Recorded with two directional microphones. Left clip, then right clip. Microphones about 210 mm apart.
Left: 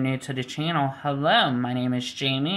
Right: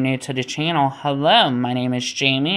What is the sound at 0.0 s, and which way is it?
Speech, 25° right (ahead or behind).